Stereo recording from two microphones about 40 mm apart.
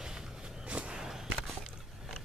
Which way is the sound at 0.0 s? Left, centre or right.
Centre.